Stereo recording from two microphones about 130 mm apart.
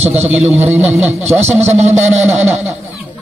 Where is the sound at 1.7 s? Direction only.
60° right (ahead or behind).